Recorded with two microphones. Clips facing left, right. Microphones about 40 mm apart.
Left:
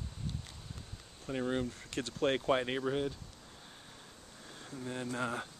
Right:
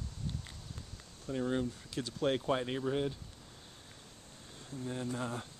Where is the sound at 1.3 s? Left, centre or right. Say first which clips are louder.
Even; left.